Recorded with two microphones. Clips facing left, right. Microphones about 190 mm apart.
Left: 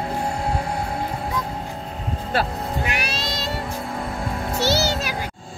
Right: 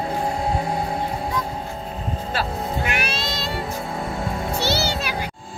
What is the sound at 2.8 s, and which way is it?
Music, 35° left (ahead or behind).